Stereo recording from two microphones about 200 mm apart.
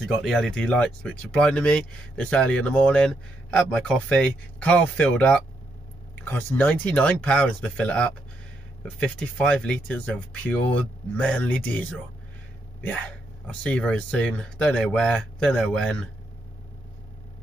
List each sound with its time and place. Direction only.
0.0 s speech: centre (ahead or behind)
13.5 s speech: 5° left (ahead or behind)